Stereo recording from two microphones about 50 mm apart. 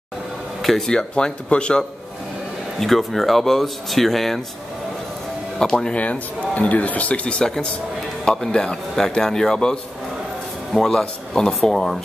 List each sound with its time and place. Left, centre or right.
0.6 s speech: centre
0.9 s speech: centre
2.8 s speech: centre
5.6 s speech: centre
5.9 s speech: left
9.2 s speech: centre